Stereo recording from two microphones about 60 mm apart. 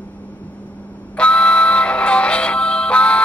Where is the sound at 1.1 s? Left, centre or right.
Centre.